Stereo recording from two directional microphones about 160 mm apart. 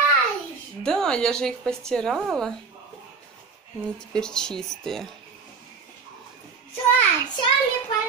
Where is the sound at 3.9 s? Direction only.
5° left (ahead or behind).